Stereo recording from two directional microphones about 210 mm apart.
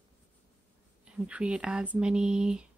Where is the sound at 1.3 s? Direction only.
5° right (ahead or behind).